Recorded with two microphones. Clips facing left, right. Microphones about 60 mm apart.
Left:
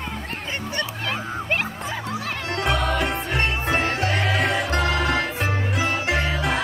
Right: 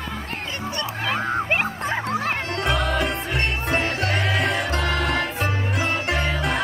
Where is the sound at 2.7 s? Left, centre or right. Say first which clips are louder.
Even; centre.